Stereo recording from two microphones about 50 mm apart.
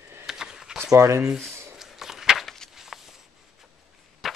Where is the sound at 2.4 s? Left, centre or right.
Centre.